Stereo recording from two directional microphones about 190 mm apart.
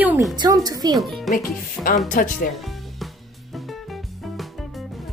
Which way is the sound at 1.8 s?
45° left (ahead or behind).